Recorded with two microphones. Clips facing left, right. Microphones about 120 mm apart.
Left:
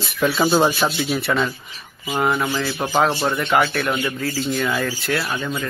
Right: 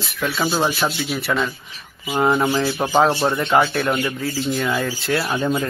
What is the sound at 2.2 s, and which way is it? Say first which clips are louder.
Speech: right 3 dB; 25° right (ahead or behind).